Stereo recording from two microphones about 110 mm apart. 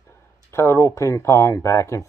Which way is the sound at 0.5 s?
25° left (ahead or behind).